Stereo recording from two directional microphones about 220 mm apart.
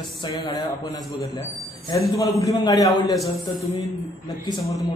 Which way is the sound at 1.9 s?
20° left (ahead or behind).